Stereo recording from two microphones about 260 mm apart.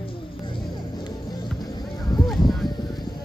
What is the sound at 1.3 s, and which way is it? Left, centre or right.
Music, centre.